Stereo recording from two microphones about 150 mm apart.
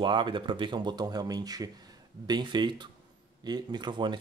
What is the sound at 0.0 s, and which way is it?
Speech, 30° right (ahead or behind).